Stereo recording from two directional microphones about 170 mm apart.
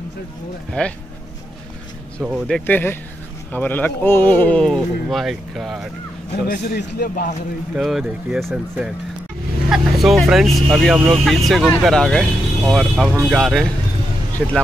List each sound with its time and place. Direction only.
0.8 s speech: 5° left (ahead or behind)
2.2 s speech: 5° right (ahead or behind)
2.5 s speech: 10° left (ahead or behind)
6.4 s a man's voice: 65° left (ahead or behind)
7.7 s speech: 5° right (ahead or behind)